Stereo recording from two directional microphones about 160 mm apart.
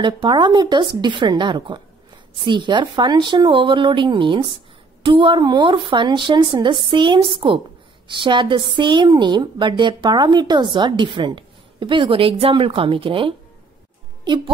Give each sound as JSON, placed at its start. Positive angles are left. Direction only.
{"t": 0.0, "sound": "a woman's voice", "side_deg": -30}